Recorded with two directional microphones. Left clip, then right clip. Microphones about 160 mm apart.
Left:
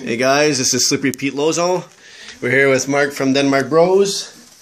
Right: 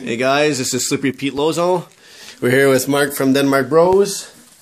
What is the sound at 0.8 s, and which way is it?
Speech, 15° right (ahead or behind).